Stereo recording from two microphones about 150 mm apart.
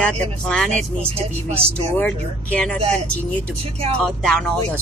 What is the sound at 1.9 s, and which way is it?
A woman's voice, 5° left (ahead or behind).